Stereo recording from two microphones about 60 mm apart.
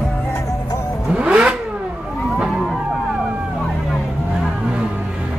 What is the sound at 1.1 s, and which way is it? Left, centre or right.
Vehicle, centre.